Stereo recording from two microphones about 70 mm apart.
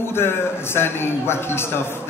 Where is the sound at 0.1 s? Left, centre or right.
Left.